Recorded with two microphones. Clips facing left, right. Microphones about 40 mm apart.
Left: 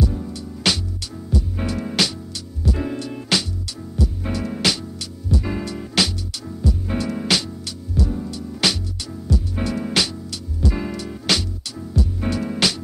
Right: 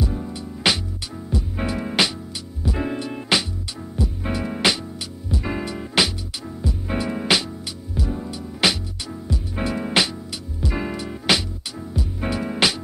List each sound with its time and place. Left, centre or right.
0.0 s music: centre